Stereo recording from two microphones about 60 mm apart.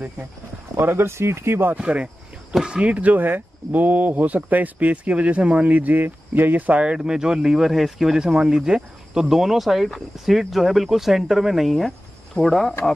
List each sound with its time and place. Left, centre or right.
0.7 s speech: right
1.8 s speech: right; by 12.7 s centre